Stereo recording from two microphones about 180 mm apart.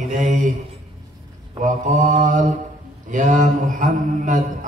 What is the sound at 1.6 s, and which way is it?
A man's voice, 45° right (ahead or behind).